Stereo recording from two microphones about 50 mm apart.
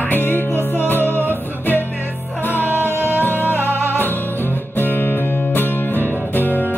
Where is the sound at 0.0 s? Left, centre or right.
Left.